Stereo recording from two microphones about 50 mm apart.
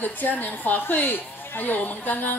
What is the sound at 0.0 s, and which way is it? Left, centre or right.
A woman's voice, left.